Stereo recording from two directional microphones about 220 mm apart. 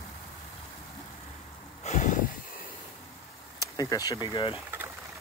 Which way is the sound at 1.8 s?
35° left (ahead or behind).